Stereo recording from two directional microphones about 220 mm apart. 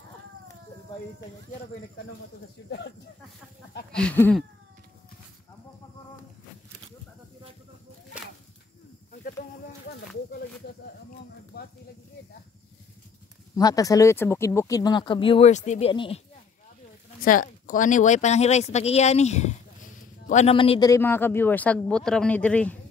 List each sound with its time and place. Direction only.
3.9 s speech: 5° left (ahead or behind)
9.1 s snake: 45° left (ahead or behind)
13.6 s speech: 15° left (ahead or behind)
17.2 s speech: 40° left (ahead or behind)
20.9 s speech: 10° left (ahead or behind)